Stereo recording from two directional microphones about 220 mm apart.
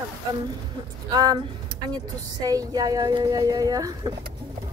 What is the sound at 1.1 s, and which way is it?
Speech, 15° right (ahead or behind).